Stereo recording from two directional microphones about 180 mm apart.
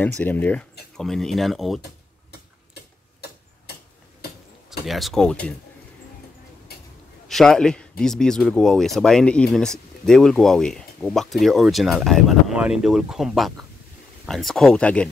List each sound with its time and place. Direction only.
0.0 s speech: 10° left (ahead or behind)
2.7 s tick-tock: 65° left (ahead or behind)
4.8 s speech: centre (ahead or behind)
7.2 s a man's voice: centre (ahead or behind)